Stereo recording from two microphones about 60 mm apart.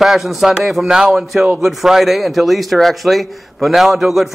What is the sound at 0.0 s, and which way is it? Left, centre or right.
A man's voice, centre.